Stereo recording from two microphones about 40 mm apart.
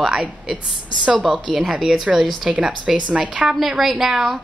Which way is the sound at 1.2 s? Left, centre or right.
Centre.